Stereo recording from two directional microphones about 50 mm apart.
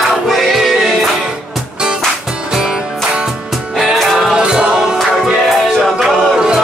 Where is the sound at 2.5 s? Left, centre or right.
Centre.